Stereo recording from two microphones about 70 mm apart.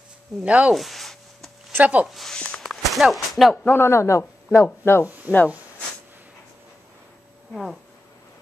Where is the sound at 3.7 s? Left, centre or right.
Left.